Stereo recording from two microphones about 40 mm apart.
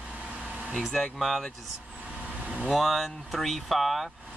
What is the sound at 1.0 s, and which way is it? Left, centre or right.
Speech, centre.